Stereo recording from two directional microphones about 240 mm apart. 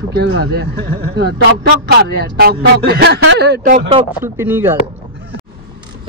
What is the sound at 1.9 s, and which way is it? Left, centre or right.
Speech, right.